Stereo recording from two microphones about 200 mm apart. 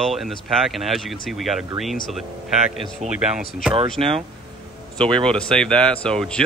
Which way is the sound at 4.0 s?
30° right (ahead or behind).